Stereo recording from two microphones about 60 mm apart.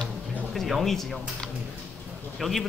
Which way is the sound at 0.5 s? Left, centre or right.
Centre.